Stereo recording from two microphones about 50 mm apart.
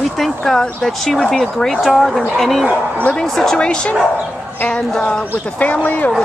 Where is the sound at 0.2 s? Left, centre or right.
Centre.